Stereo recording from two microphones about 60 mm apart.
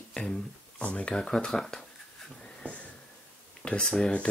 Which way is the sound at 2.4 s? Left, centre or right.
Left.